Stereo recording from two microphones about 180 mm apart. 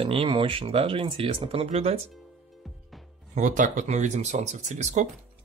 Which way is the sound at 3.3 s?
45° right (ahead or behind).